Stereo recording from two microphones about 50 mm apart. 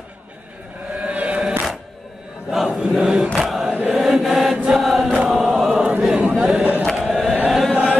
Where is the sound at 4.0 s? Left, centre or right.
Centre.